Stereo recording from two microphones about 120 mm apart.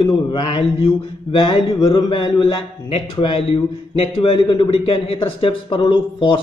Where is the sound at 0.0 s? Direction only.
45° left (ahead or behind).